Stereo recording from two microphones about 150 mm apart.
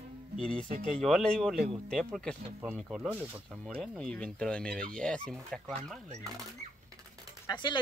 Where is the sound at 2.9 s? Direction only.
10° right (ahead or behind).